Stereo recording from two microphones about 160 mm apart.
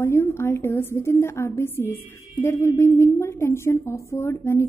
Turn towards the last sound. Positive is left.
turn(degrees=15)  # may be behind; listen again after turning